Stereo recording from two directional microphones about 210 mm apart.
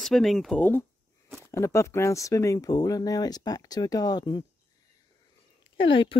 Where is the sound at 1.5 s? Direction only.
15° left (ahead or behind).